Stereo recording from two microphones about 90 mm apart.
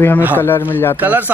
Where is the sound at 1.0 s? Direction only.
20° right (ahead or behind).